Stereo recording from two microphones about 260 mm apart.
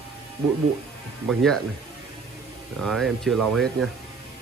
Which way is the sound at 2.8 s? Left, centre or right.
Centre.